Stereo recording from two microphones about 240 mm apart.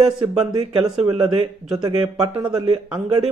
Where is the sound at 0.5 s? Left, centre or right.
Right.